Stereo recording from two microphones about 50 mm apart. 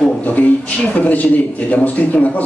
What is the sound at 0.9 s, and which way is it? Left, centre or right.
A man's voice, left.